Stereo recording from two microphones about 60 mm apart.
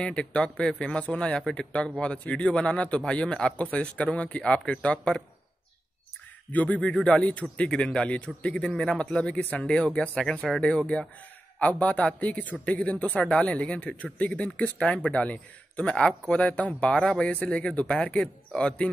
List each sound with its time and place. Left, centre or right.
0.0 s speech: centre
6.5 s speech: left
13.1 s speech: centre